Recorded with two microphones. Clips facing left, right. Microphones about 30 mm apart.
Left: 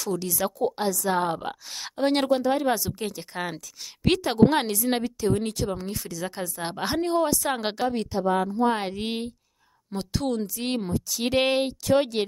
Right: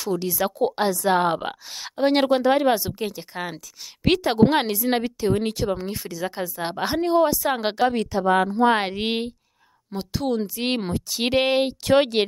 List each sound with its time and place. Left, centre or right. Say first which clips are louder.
0.0 s speech: right 3 dB; right
0.6 s a woman's voice: right 4 dB; right
1.7 s speech: right 3 dB; centre
2.2 s a woman's voice: right 4 dB; right
3.0 s speech: right 2 dB; centre
5.0 s speech: right 3 dB; right; by 7.9 s centre
8.3 s speech: right 5 dB; right
8.7 s a woman's voice: right 5 dB; right
9.9 s speech: right 3 dB; centre
10.4 s speech: right 4 dB; right
10.8 s speech: right 2 dB; right
11.3 s speech: right 2 dB; centre
11.8 s a woman's voice: right 4 dB; right